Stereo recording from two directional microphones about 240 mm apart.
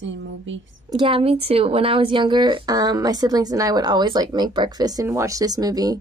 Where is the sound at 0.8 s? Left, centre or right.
Right.